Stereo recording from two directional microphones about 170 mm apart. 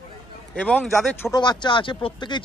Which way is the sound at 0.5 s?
5° left (ahead or behind).